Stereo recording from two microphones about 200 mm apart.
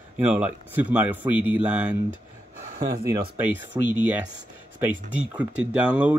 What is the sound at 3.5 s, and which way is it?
Speech, 10° right (ahead or behind).